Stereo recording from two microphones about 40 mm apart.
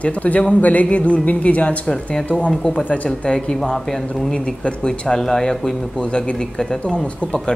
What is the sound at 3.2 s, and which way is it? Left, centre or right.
Speech, left.